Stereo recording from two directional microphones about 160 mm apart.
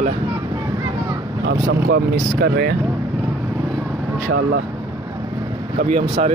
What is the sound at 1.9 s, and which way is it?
Speech, 75° right (ahead or behind).